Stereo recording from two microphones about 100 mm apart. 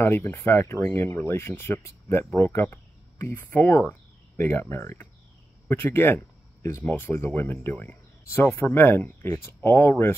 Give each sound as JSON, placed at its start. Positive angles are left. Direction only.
{"t": 0.0, "sound": "speech", "side_deg": 20}